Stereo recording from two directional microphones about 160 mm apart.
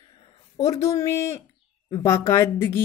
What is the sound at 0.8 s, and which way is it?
Speech, 20° left (ahead or behind).